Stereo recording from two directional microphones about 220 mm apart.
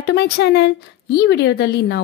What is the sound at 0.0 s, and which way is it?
A woman's voice, 50° left (ahead or behind).